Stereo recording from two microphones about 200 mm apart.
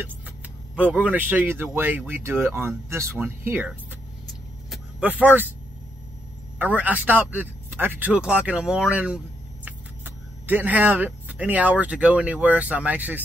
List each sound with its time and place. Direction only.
0.7 s speech: 5° right (ahead or behind)
4.6 s vehicle: 10° right (ahead or behind)
6.6 s speech: 10° right (ahead or behind)